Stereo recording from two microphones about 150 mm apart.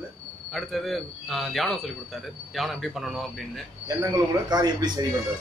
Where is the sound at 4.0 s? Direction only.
25° right (ahead or behind).